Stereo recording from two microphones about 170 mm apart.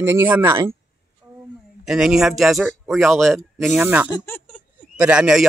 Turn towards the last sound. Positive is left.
turn(degrees=-5)  # may be behind; listen again after turning